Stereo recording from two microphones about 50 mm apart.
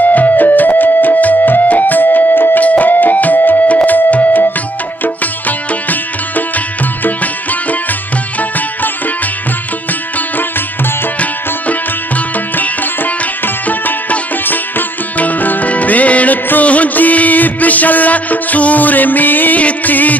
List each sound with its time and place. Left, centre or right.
0.0 s music: left
5.9 s music: left
8.4 s music: left
12.5 s music: left